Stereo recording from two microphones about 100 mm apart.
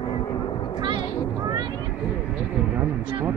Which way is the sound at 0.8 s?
50° right (ahead or behind).